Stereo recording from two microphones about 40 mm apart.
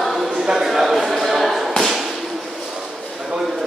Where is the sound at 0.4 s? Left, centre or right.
Centre.